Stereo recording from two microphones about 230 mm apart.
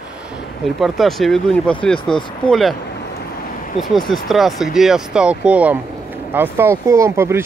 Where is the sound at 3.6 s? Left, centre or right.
Left.